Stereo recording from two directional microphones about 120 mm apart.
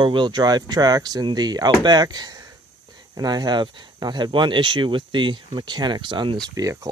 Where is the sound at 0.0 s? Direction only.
40° right (ahead or behind).